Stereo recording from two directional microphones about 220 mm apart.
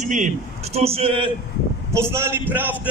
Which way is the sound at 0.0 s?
35° right (ahead or behind).